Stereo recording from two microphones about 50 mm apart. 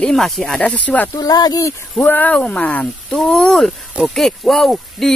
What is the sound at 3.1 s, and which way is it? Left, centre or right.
Speech, centre.